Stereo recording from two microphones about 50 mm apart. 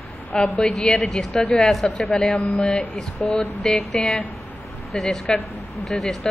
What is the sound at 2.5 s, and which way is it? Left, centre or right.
Speech, left.